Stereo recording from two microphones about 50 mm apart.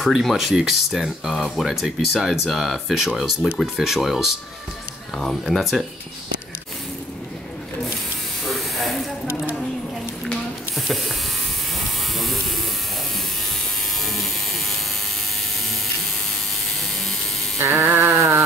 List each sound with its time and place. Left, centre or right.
0.0 s speech: centre
8.5 s electric shaver: centre
10.9 s mechanisms: centre
14.0 s electric shaver: centre
16.6 s mechanisms: centre
17.6 s a sound: right
18.0 s a sound: right